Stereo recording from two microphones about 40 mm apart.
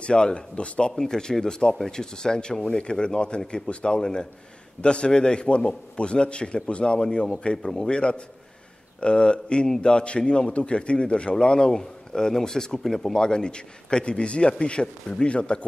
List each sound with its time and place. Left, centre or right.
0.0 s a man's voice: left
0.9 s a man's voice: centre